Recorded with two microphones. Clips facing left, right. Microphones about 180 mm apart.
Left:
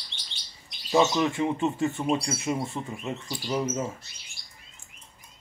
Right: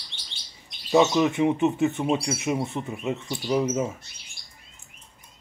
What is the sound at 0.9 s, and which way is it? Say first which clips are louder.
Speech: right 3 dB; 10° right (ahead or behind).